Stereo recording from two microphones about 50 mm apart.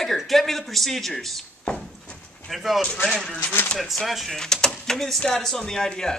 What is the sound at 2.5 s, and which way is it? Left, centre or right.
Speech, centre.